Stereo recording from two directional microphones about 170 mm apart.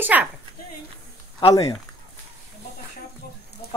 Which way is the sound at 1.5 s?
20° left (ahead or behind).